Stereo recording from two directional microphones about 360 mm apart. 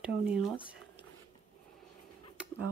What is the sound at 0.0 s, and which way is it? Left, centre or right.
Speech, centre.